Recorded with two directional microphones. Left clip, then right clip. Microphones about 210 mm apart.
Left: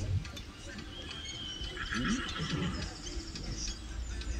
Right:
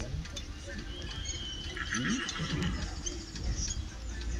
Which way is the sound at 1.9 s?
20° right (ahead or behind).